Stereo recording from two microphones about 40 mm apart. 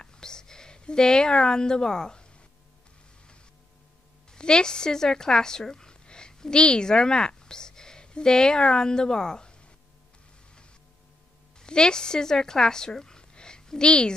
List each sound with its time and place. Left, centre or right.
0.0 s speech: centre
4.3 s speech: left
11.6 s speech: centre